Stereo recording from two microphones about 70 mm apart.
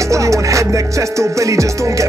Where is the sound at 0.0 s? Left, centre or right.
Right.